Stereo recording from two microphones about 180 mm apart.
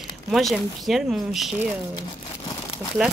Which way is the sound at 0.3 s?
Centre (ahead or behind).